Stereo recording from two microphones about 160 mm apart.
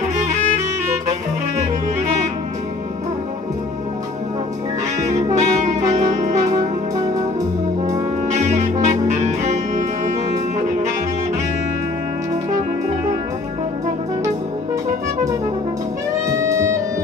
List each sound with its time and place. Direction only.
5.4 s brass instrument: 45° right (ahead or behind)
8.3 s music: 50° right (ahead or behind)
16.3 s music: 20° right (ahead or behind)